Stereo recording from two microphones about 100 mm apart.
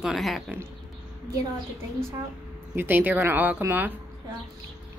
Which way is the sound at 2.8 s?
20° right (ahead or behind).